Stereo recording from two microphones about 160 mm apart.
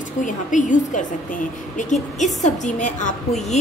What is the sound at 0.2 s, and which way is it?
A woman's voice, 55° left (ahead or behind).